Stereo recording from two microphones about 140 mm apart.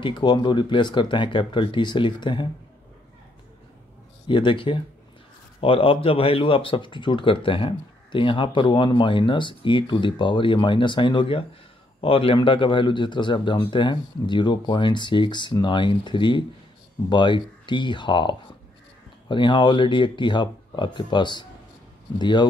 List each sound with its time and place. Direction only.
0.0 s speech: 35° left (ahead or behind)
4.3 s speech: 35° left (ahead or behind)